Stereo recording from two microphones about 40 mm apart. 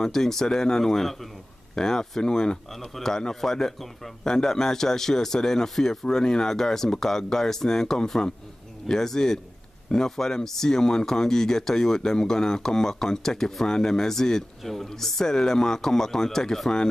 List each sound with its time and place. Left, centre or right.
0.0 s speech: centre
2.7 s speech: centre